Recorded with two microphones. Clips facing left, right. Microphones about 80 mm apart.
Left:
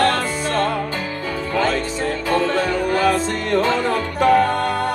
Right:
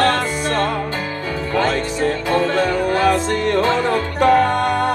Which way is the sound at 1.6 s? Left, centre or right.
Right.